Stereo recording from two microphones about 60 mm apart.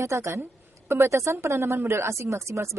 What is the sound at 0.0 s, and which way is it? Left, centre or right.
A woman's voice, right.